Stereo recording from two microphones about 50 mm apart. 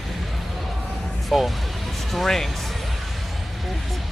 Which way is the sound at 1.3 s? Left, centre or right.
Centre.